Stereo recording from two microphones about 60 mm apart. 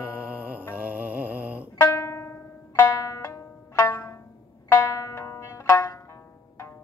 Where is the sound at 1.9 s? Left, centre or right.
Left.